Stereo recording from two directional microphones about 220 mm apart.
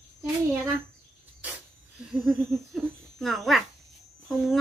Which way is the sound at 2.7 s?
Centre (ahead or behind).